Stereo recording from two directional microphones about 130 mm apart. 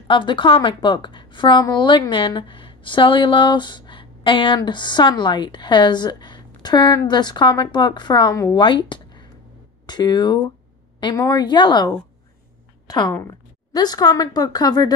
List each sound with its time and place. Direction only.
0.1 s a woman's voice: 40° left (ahead or behind)
13.1 s a woman's voice: 20° left (ahead or behind)
13.7 s a woman's voice: 30° left (ahead or behind)